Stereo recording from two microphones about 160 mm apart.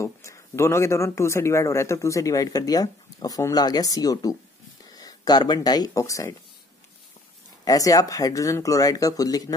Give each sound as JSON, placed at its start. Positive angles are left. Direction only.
{"t": 0.0, "sound": "speech", "side_deg": 20}
{"t": 7.6, "sound": "speech", "side_deg": 20}